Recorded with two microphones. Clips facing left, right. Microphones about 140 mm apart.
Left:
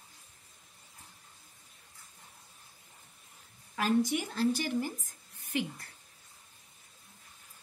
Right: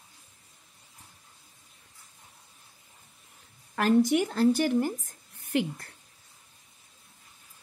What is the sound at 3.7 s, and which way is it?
Speech, 60° right (ahead or behind).